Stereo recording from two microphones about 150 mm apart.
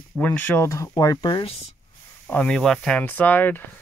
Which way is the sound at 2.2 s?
10° left (ahead or behind).